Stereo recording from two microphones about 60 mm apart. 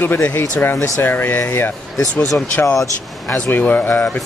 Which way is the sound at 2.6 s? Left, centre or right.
Left.